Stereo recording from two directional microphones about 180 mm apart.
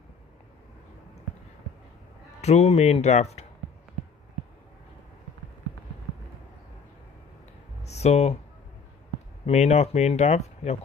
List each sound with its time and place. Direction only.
2.4 s speech: 35° left (ahead or behind)
7.8 s a sound: 35° left (ahead or behind)
9.5 s speech: 40° left (ahead or behind)